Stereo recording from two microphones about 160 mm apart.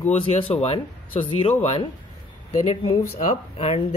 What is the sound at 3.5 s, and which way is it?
Speech, 40° left (ahead or behind).